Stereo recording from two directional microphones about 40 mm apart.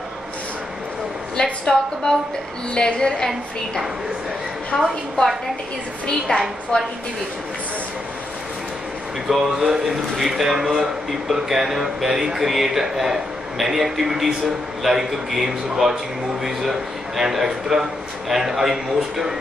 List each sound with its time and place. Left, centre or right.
1.3 s a woman's voice: centre
4.7 s a woman's voice: centre
6.0 s a woman's voice: centre
6.7 s a woman's voice: left
9.6 s speech: centre
17.2 s speech: centre